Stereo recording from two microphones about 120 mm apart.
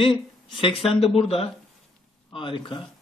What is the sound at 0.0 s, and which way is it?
A man's voice, 45° left (ahead or behind).